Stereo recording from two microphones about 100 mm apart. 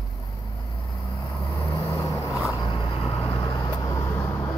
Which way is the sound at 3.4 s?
40° left (ahead or behind).